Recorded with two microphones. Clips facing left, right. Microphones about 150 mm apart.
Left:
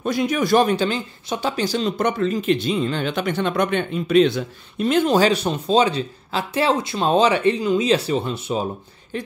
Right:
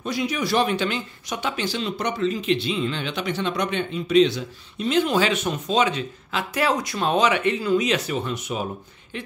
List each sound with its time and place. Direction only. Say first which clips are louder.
0.0 s speech: left 5 dB; 50° left (ahead or behind)
5.0 s speech: left 4 dB; 35° left (ahead or behind)